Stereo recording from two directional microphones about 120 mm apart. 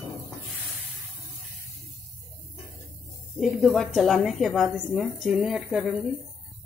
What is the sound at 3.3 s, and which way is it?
A woman's voice, centre (ahead or behind).